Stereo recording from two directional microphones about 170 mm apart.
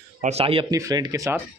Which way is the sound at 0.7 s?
20° right (ahead or behind).